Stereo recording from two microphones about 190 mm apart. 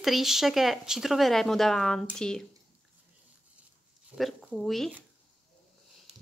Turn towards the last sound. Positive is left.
turn(degrees=-5)  # may be behind; listen again after turning